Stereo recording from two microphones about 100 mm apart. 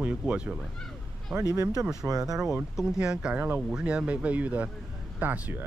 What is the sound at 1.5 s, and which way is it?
Speech, 35° right (ahead or behind).